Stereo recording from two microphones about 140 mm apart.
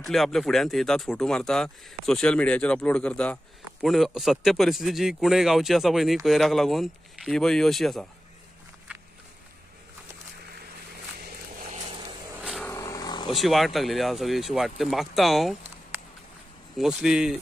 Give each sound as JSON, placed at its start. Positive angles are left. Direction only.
{"t": 0.0, "sound": "a man's voice", "side_deg": 0}
{"t": 11.6, "sound": "a sound", "side_deg": -55}
{"t": 12.6, "sound": "vehicle", "side_deg": 25}
{"t": 13.3, "sound": "a man's voice", "side_deg": 0}
{"t": 16.7, "sound": "a man's voice", "side_deg": -5}